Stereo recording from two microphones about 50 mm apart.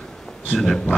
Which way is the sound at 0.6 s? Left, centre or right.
Centre.